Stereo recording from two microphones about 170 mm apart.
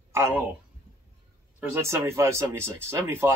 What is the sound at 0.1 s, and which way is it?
Speech, 15° right (ahead or behind).